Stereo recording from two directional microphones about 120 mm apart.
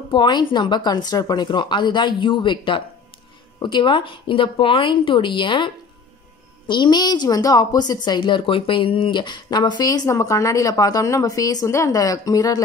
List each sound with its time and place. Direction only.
0.1 s a woman's voice: 40° left (ahead or behind)
6.7 s a woman's voice: 40° left (ahead or behind)